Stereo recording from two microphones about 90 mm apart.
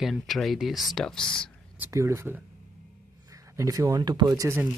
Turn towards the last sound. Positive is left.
turn(degrees=-40)  # may be behind; listen again after turning